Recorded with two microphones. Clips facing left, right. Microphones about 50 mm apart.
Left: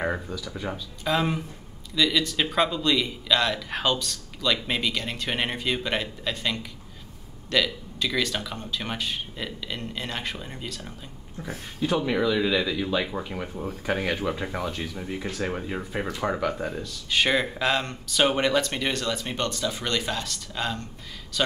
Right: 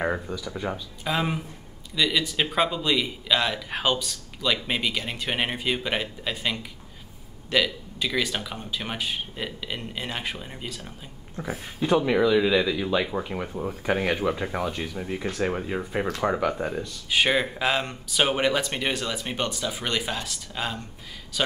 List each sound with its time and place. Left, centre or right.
0.0 s speech: centre
11.4 s speech: right
12.0 s speech: centre